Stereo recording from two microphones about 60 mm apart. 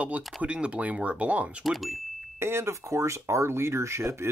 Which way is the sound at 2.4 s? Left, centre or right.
Right.